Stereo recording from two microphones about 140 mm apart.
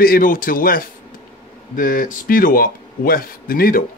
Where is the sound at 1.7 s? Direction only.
75° left (ahead or behind).